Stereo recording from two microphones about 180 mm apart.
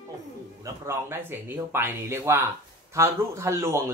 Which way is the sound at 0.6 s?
15° right (ahead or behind).